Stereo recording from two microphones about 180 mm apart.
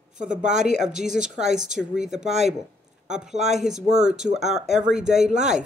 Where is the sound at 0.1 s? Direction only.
45° right (ahead or behind).